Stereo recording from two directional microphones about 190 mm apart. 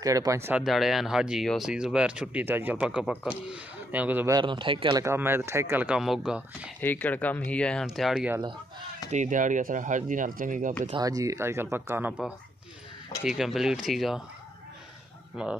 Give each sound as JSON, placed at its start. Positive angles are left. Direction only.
{"t": 0.0, "sound": "speech", "side_deg": -15}
{"t": 4.4, "sound": "speech", "side_deg": -25}
{"t": 5.0, "sound": "speech", "side_deg": -10}
{"t": 6.8, "sound": "speech", "side_deg": 10}
{"t": 9.1, "sound": "speech", "side_deg": -40}
{"t": 10.9, "sound": "speech", "side_deg": -20}
{"t": 15.4, "sound": "speech", "side_deg": -5}